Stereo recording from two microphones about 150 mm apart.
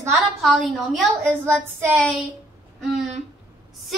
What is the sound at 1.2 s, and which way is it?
Speech, 15° right (ahead or behind).